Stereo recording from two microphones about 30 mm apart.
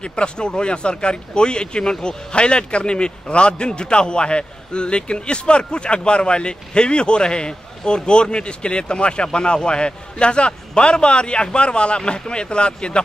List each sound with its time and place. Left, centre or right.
0.0 s a man's voice: left
2.3 s a man's voice: left